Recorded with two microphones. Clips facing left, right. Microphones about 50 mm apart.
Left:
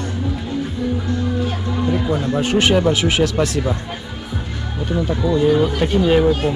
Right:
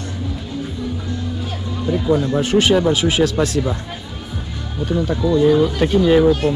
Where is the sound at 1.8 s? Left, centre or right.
Left.